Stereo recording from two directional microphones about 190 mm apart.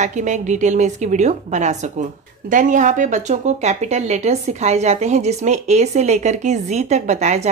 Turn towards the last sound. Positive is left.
turn(degrees=-35)  # may be behind; listen again after turning